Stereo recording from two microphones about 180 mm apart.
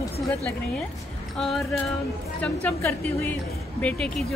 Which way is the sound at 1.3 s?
Centre (ahead or behind).